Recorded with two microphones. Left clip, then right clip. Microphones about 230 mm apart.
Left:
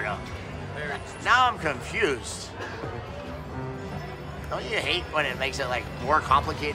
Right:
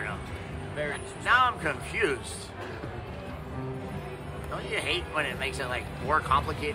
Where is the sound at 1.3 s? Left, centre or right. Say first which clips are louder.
Left 2 dB; centre.